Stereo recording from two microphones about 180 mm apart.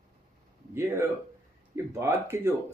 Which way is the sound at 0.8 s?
15° right (ahead or behind).